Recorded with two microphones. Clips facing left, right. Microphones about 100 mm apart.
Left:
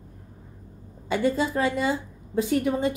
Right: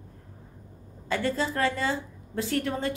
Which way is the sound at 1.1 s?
15° left (ahead or behind).